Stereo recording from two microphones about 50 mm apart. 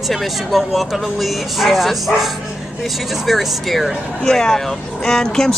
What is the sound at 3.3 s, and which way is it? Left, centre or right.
Speech, centre.